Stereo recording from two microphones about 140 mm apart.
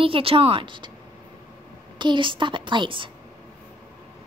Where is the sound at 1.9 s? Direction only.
35° right (ahead or behind).